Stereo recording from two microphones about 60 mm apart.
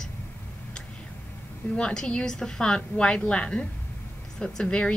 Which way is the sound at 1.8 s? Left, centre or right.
Centre.